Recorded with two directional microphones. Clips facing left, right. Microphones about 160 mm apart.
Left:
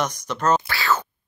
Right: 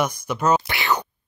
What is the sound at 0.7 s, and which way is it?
Speech, 20° right (ahead or behind).